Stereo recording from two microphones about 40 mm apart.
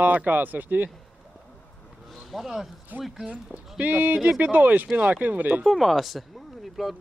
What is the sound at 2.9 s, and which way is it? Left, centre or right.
Speech, right.